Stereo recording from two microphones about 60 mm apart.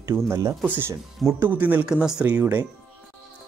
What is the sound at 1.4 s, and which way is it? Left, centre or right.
Speech, right.